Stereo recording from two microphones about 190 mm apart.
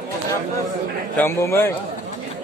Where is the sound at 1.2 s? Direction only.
15° left (ahead or behind).